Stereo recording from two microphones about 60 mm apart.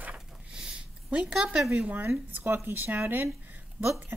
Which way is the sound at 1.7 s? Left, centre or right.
Right.